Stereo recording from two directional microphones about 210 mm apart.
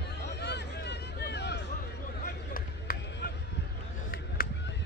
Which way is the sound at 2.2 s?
45° left (ahead or behind).